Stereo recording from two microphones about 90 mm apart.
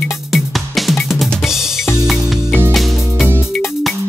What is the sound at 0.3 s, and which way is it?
Music, centre (ahead or behind).